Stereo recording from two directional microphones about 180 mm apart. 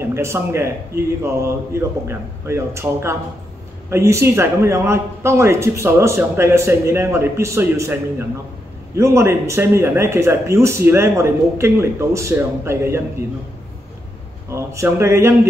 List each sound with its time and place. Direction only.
0.0 s speech: 15° right (ahead or behind)
14.5 s speech: 15° right (ahead or behind)